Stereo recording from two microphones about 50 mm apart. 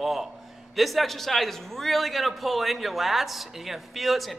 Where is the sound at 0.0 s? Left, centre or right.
Centre.